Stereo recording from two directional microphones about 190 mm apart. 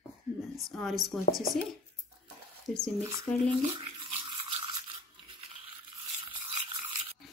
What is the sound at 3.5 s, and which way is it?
Toothbrush, 25° right (ahead or behind).